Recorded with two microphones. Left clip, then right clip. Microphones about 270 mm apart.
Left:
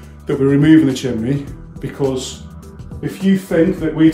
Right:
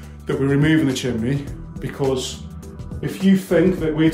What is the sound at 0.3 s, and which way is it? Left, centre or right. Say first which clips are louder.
Speech: left 7 dB; centre.